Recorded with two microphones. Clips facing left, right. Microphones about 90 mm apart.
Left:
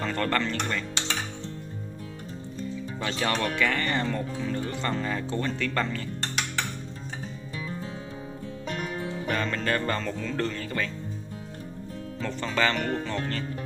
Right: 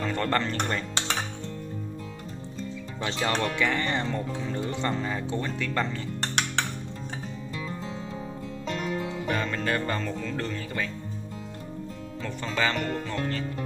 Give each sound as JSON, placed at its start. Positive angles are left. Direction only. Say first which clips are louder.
{"t": 0.0, "sound": "speech", "louder": "right 1 dB", "side_deg": -20}
{"t": 0.4, "sound": "speech", "louder": "even", "side_deg": -35}
{"t": 3.1, "sound": "speech", "louder": "even", "side_deg": -20}
{"t": 9.3, "sound": "music", "louder": "left 1 dB", "side_deg": -10}
{"t": 12.2, "sound": "music", "louder": "left 2 dB", "side_deg": -10}